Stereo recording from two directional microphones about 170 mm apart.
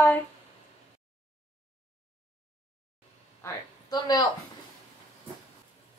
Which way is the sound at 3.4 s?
20° left (ahead or behind).